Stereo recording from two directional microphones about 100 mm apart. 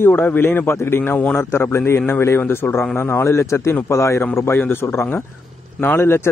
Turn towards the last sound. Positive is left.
turn(degrees=25)  # may be behind; listen again after turning